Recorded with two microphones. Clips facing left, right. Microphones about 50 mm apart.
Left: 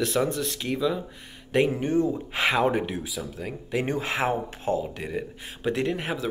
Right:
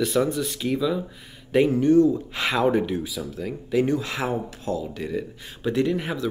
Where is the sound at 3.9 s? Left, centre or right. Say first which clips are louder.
Right 1 dB; left.